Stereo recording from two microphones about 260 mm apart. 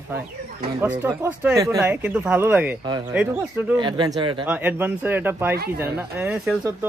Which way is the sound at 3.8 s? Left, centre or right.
Centre.